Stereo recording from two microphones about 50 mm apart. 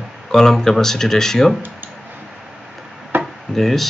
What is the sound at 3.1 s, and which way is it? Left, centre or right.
Chop, right.